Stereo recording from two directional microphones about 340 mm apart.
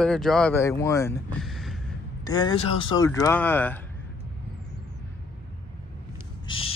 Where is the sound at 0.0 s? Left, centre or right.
Centre.